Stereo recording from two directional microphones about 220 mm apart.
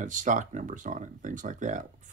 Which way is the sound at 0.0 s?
35° right (ahead or behind).